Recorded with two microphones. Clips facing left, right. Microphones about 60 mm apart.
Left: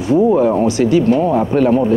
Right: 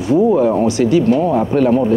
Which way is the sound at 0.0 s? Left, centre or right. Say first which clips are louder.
Even; left.